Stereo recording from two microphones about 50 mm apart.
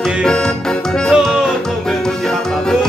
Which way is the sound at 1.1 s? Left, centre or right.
Centre.